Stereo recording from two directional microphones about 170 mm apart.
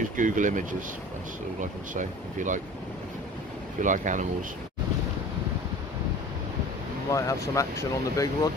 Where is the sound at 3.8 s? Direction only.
50° right (ahead or behind).